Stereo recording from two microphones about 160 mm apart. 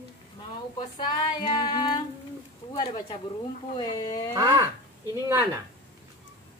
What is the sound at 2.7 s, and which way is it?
Speech, 30° left (ahead or behind).